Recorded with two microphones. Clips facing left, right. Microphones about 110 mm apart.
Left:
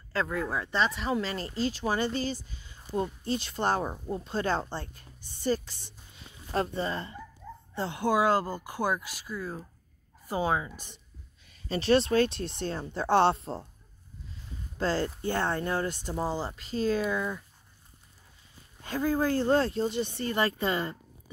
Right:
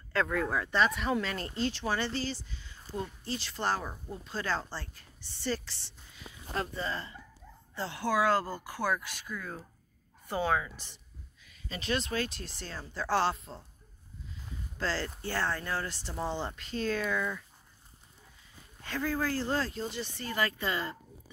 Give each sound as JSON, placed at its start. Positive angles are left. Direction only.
{"t": 0.1, "sound": "speech", "side_deg": 5}
{"t": 2.3, "sound": "speech", "side_deg": 50}
{"t": 2.6, "sound": "a sound", "side_deg": 15}
{"t": 3.0, "sound": "speech", "side_deg": 20}
{"t": 6.1, "sound": "a woman's voice", "side_deg": 30}
{"t": 11.4, "sound": "speech", "side_deg": 40}
{"t": 14.8, "sound": "speech", "side_deg": 20}
{"t": 18.9, "sound": "speech", "side_deg": 15}